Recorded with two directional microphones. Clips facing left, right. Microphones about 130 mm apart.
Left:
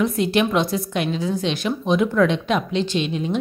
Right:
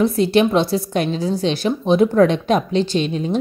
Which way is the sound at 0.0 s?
35° right (ahead or behind).